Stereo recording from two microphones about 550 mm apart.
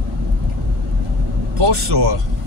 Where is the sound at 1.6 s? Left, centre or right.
Right.